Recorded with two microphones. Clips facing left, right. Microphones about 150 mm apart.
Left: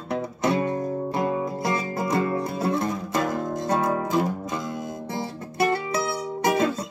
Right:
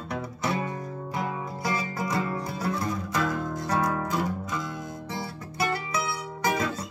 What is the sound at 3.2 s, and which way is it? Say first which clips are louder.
Music: left 2 dB; 45° left (ahead or behind).